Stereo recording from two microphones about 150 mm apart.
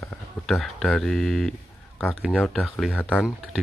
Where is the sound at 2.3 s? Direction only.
10° left (ahead or behind).